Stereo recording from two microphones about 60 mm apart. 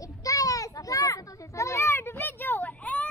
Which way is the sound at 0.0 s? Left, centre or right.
Left.